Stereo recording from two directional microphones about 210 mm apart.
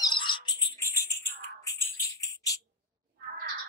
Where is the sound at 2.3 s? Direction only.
15° left (ahead or behind).